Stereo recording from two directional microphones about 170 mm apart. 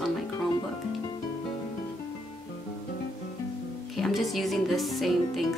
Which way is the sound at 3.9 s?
Centre (ahead or behind).